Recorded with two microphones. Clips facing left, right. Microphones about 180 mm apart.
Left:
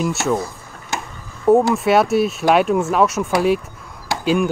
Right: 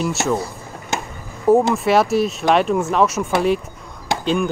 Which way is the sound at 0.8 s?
20° right (ahead or behind).